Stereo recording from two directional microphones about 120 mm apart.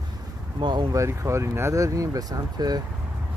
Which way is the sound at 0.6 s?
40° right (ahead or behind).